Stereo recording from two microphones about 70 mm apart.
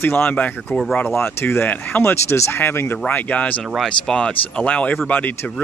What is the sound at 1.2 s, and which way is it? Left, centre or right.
Speech, left.